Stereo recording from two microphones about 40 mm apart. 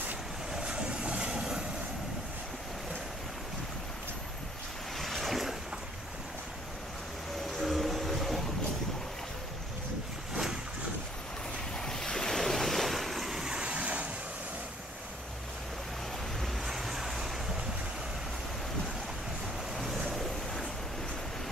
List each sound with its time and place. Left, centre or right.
0.5 s vehicle: right
4.9 s boat: centre
7.5 s a sound: centre
10.3 s boat: centre
11.8 s waves: centre
13.7 s vehicle: right
16.6 s vehicle: centre
20.1 s vehicle: centre